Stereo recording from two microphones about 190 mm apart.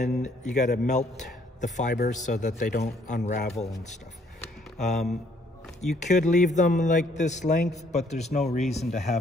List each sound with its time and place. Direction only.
0.0 s a man's voice: 40° left (ahead or behind)
4.7 s a man's voice: 40° left (ahead or behind)